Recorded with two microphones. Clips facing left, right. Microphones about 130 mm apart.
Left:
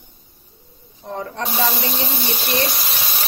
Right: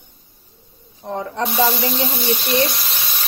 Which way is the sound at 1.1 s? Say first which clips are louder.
Right 3 dB; 30° right (ahead or behind).